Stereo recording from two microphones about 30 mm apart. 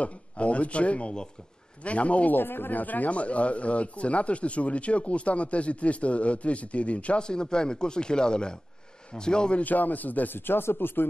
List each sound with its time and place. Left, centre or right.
0.0 s speech: left
2.3 s speech: left
3.1 s speech: left
7.2 s speech: left
9.6 s speech: left